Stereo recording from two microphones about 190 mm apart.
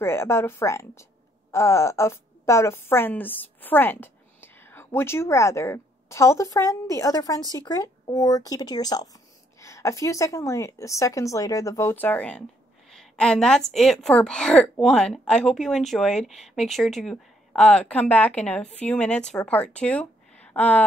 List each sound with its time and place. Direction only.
0.0 s a woman's voice: 15° left (ahead or behind)